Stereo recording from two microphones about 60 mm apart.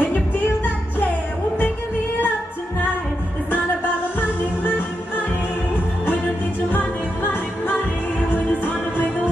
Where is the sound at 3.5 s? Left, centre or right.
Left.